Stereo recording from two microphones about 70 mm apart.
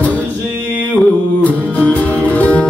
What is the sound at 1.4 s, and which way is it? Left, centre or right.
Music, left.